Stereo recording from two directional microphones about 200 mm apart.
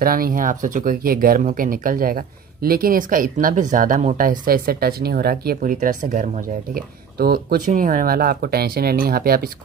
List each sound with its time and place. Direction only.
0.0 s speech: 45° right (ahead or behind)